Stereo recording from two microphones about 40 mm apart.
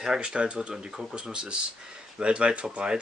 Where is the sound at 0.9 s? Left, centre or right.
Centre.